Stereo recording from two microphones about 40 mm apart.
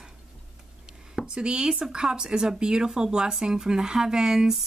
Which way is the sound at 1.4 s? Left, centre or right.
Right.